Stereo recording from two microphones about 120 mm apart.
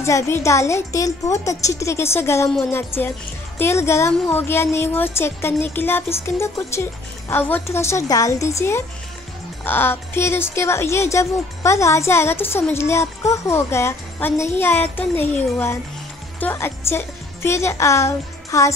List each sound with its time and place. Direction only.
0.0 s a woman's voice: 25° left (ahead or behind)